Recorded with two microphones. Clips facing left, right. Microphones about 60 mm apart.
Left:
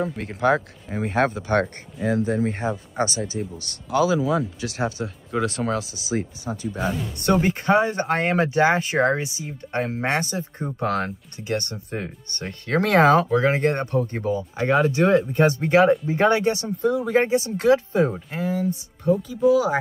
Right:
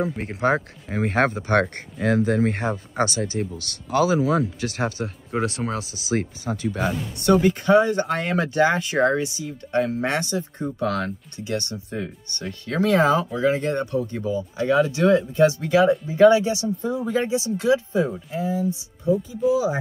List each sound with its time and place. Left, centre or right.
0.2 s speech: right
0.9 s speech: right
2.0 s speech: right
3.5 s speech: right
3.9 s speech: right
5.3 s speech: right
5.9 s speech: right
6.5 s speech: right
7.2 s speech: left